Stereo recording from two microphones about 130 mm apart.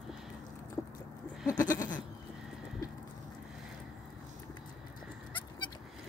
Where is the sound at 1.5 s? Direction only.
30° left (ahead or behind).